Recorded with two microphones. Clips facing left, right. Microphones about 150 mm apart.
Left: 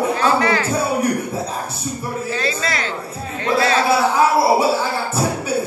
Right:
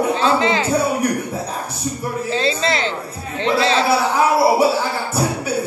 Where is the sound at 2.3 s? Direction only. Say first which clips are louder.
Right 5 dB; 25° right (ahead or behind).